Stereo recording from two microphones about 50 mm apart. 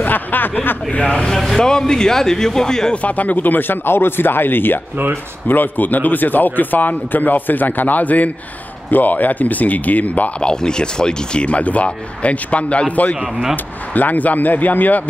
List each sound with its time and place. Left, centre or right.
0.0 s speech: left
1.0 s speech: centre
1.3 s speech: centre
3.0 s a man's voice: left
10.4 s speech: centre
11.4 s a man's voice: left